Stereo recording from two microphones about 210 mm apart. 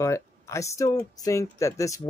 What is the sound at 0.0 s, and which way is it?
Speech, 15° left (ahead or behind).